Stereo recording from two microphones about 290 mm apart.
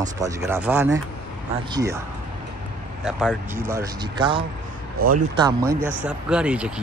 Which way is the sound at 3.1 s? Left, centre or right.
Centre.